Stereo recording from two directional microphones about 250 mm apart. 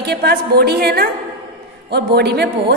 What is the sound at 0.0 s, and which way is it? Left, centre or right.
A woman's voice, right.